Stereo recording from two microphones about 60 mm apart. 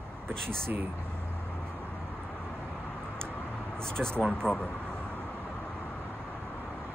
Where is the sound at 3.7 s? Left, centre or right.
Centre.